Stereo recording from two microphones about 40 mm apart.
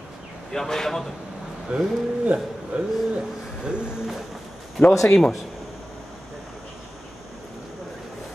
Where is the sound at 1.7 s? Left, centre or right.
Right.